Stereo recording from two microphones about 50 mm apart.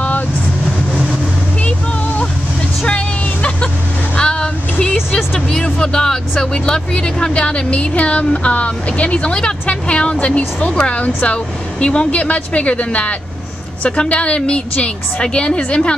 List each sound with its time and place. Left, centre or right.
1.6 s vehicle: left
4.2 s vehicle: centre
5.5 s speech: centre